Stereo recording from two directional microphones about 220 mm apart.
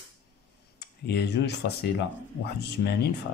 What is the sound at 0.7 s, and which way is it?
Speech, 50° left (ahead or behind).